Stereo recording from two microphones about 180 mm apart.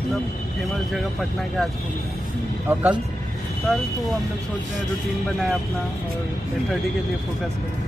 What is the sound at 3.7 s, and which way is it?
Speech, 5° left (ahead or behind).